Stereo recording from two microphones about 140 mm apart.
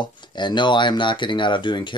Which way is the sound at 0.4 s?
35° left (ahead or behind).